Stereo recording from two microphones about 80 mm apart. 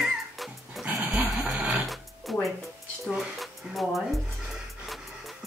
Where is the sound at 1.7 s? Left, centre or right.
Centre.